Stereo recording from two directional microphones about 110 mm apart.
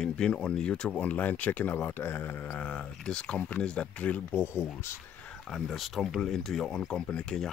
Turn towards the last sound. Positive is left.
turn(degrees=5)  # may be behind; listen again after turning